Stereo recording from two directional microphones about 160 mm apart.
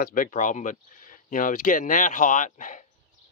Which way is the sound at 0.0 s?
60° left (ahead or behind).